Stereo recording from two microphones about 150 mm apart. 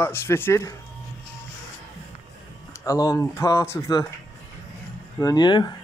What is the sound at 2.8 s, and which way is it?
Speech, 25° left (ahead or behind).